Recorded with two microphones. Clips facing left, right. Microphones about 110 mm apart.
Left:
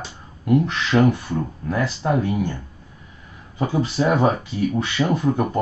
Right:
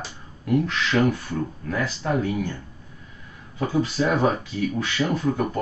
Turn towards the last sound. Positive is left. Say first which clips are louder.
# left 3 dB
turn(degrees=20)  # may be behind; listen again after turning